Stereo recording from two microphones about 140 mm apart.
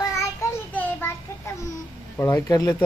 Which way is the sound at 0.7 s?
15° left (ahead or behind).